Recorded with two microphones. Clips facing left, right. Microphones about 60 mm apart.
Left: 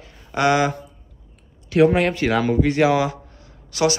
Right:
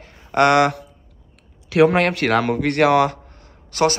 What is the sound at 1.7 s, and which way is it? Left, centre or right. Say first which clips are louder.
A man's voice: right 1 dB; right.